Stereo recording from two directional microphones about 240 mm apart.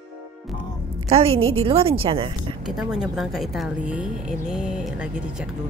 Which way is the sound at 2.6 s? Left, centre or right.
Centre.